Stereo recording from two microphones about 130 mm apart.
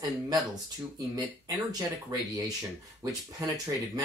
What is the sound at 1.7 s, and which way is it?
Speech, 30° right (ahead or behind).